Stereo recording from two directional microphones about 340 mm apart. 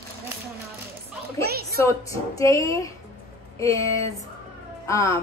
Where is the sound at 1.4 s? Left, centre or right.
Right.